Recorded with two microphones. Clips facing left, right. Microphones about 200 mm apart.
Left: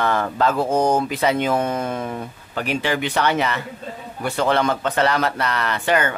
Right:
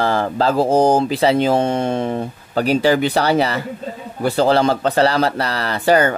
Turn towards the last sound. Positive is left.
turn(degrees=-35)  # may be behind; listen again after turning